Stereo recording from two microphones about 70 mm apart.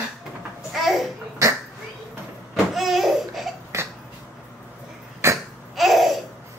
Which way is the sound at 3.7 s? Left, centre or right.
Right.